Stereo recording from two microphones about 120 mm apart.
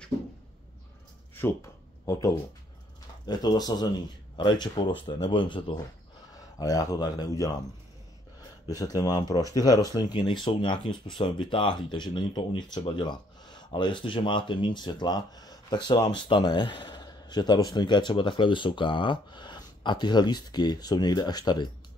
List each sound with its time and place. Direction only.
1.3 s a sound: 20° left (ahead or behind)
3.3 s speech: 35° left (ahead or behind)
6.3 s speech: 30° left (ahead or behind)
8.6 s speech: 30° left (ahead or behind)